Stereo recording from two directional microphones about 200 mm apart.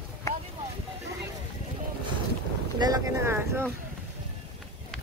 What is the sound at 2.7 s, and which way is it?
Speech, 20° right (ahead or behind).